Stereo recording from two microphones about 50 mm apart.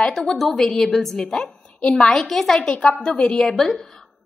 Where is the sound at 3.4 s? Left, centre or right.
Centre.